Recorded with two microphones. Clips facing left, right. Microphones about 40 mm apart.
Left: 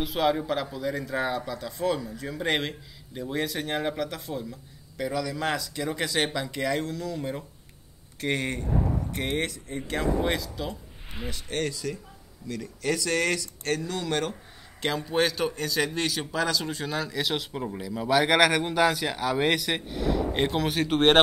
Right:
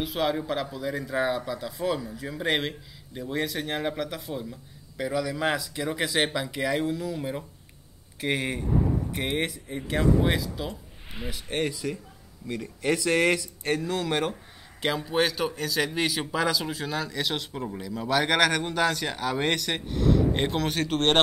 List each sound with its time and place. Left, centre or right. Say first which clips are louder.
0.0 s a man's voice: left 2 dB; centre